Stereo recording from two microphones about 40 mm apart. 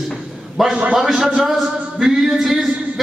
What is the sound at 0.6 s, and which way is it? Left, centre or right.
A man's voice, centre.